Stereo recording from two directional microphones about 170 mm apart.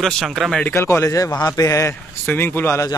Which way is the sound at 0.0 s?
Centre (ahead or behind).